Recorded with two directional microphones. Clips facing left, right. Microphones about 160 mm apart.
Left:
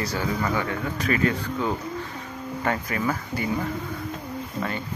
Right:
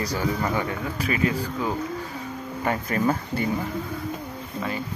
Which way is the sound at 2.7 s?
30° right (ahead or behind).